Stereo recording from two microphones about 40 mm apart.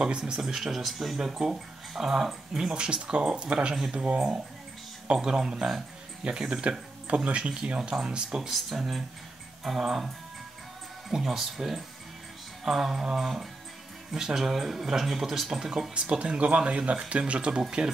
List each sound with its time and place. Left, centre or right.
0.0 s speech: right
0.5 s speech: centre
1.1 s speech: centre
8.4 s speech: centre
15.9 s speech: right